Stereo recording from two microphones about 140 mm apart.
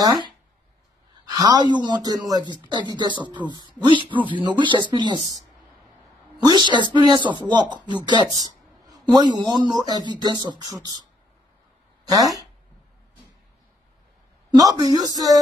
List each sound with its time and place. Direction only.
0.0 s speech: 30° right (ahead or behind)
6.4 s speech: 30° right (ahead or behind)
12.0 s speech: 25° right (ahead or behind)
14.5 s a woman's voice: 30° right (ahead or behind)